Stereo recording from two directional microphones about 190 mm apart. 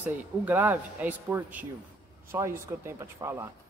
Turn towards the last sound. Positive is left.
turn(degrees=-15)  # may be behind; listen again after turning